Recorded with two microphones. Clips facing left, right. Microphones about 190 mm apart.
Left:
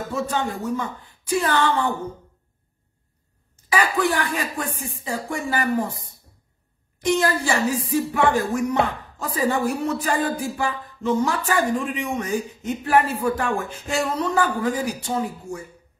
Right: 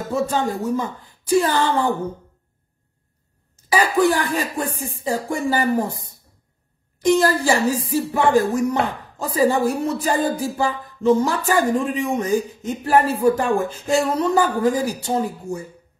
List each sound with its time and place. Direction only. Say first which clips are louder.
0.1 s speech: right 5 dB; 35° right (ahead or behind)
4.0 s speech: right 4 dB; 35° right (ahead or behind)